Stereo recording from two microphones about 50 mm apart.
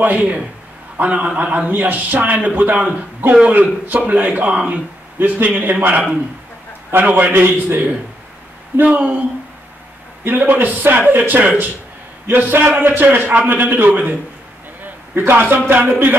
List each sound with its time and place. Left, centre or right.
0.0 s a man's voice: right
10.2 s a man's voice: right
15.1 s a man's voice: right